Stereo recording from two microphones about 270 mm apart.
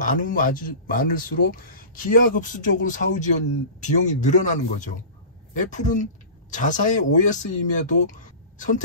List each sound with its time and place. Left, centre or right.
0.0 s speech: left